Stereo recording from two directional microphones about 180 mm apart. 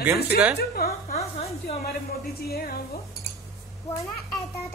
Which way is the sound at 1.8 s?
60° left (ahead or behind).